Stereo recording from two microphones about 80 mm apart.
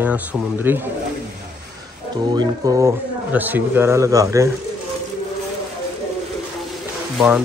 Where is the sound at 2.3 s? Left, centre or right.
Right.